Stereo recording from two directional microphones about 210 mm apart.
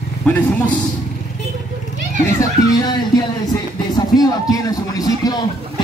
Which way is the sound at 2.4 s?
20° left (ahead or behind).